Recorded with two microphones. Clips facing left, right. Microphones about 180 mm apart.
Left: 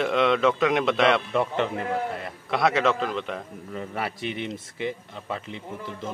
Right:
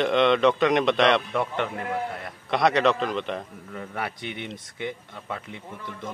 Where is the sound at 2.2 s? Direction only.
Centre (ahead or behind).